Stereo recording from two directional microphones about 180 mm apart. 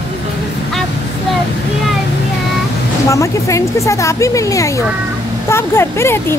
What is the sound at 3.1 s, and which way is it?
Speech, 15° left (ahead or behind).